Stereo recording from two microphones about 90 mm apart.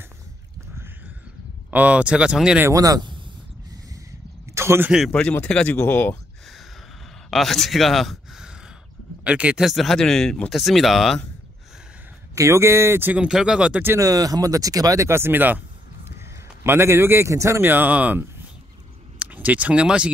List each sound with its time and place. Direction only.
1.7 s speech: 15° right (ahead or behind)
2.7 s speech: 40° right (ahead or behind)
4.6 s speech: 25° right (ahead or behind)
5.7 s speech: 25° left (ahead or behind)
7.2 s speech: centre (ahead or behind)
9.2 s speech: 15° right (ahead or behind)
9.7 s speech: centre (ahead or behind)
12.4 s speech: 30° right (ahead or behind)
13.1 s speech: 10° right (ahead or behind)
13.9 s a man's voice: 40° right (ahead or behind)
17.6 s speech: 20° right (ahead or behind)